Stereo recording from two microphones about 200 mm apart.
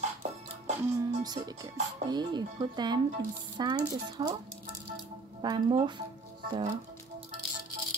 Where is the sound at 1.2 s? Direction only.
20° right (ahead or behind).